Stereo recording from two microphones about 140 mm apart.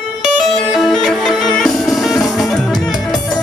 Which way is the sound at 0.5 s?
Centre (ahead or behind).